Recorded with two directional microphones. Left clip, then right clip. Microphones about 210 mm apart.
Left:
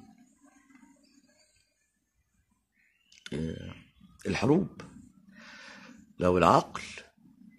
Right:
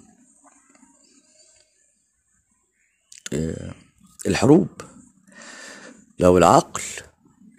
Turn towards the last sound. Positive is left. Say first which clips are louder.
# right 8 dB
turn(degrees=-35)  # may be behind; listen again after turning